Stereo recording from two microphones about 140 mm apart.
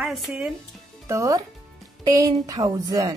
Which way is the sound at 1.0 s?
25° right (ahead or behind).